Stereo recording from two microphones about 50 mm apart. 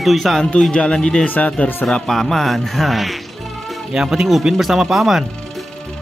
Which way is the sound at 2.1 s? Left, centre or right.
Centre.